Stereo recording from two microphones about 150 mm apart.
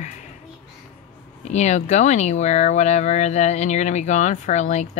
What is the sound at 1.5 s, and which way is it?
Speech, 50° left (ahead or behind).